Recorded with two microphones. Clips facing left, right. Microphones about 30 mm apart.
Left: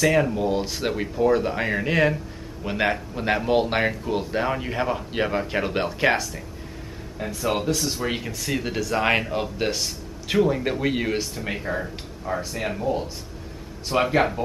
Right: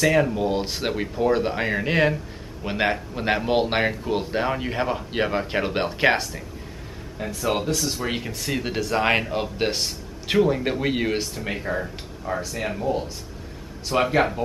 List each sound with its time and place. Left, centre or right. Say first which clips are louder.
0.0 s speech: even; centre
7.2 s speech: even; centre